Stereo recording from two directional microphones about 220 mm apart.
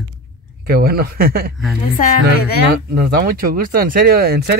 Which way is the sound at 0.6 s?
45° right (ahead or behind).